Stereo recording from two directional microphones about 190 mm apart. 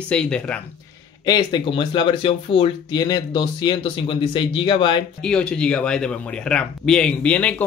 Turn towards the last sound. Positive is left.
turn(degrees=5)  # may be behind; listen again after turning